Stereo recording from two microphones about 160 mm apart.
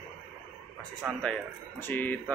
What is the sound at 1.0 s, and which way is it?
Speech, 5° right (ahead or behind).